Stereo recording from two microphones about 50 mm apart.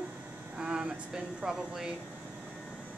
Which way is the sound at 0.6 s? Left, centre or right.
Centre.